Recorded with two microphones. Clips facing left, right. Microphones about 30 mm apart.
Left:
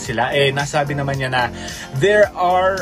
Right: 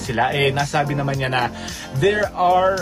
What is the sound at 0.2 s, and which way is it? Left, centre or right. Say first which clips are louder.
Speech: left 2 dB; centre.